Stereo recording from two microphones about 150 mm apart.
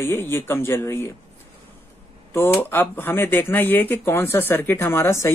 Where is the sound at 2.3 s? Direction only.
15° left (ahead or behind).